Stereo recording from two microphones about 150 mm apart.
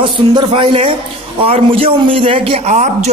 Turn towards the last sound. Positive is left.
turn(degrees=-50)  # may be behind; listen again after turning